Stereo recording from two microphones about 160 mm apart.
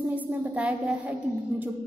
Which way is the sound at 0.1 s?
10° right (ahead or behind).